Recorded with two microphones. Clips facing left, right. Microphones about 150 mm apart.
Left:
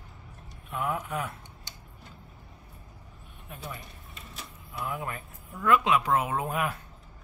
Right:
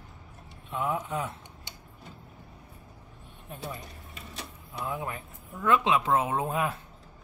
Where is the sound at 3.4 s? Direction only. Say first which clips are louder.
Right 2 dB; 35° right (ahead or behind).